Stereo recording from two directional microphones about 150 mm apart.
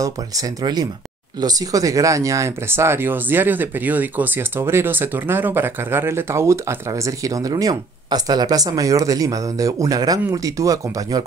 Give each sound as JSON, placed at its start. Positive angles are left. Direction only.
{"t": 0.0, "sound": "speech", "side_deg": -25}